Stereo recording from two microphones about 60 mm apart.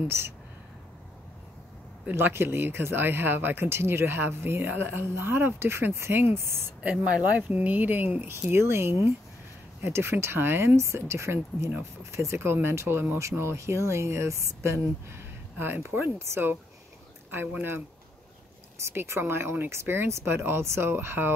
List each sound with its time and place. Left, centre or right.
2.0 s speech: right
6.8 s speech: centre
8.5 s speech: right
12.4 s speech: right
15.6 s speech: right
17.6 s speech: right